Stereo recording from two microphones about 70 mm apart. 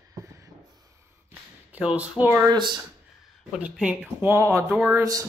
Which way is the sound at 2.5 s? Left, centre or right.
Right.